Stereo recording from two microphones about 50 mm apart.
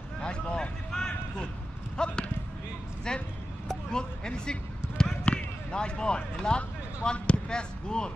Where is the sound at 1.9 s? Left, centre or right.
Centre.